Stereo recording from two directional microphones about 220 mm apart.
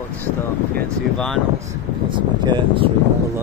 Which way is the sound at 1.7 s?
20° right (ahead or behind).